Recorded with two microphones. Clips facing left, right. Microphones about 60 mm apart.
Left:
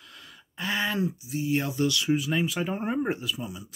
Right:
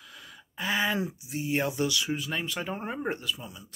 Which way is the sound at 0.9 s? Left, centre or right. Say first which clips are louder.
Left 3 dB; right.